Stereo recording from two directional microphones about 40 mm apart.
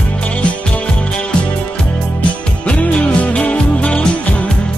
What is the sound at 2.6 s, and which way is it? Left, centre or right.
Music, left.